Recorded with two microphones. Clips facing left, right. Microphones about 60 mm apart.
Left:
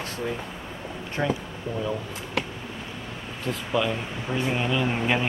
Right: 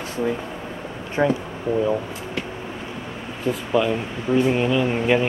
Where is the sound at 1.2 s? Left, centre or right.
Right.